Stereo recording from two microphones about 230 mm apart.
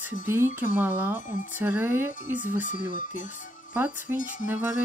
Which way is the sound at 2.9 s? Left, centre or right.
Left.